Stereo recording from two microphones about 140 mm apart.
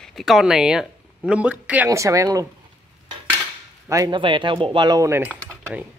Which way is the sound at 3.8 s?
25° right (ahead or behind).